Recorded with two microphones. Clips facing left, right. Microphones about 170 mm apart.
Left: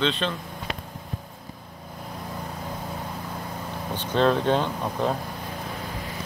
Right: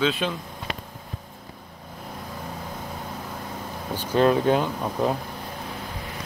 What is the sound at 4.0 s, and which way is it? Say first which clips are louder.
Speech: right 2 dB; 10° right (ahead or behind).